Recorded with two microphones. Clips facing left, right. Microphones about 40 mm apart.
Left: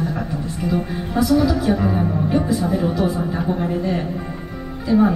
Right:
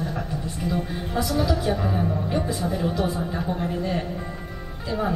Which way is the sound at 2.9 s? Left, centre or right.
Left.